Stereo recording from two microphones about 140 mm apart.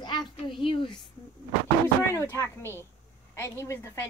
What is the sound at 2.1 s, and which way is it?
A woman's voice, 15° left (ahead or behind).